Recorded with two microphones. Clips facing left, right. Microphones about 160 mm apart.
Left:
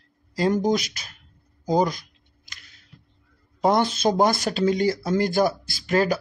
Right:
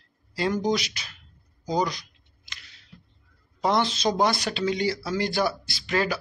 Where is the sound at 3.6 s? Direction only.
50° left (ahead or behind).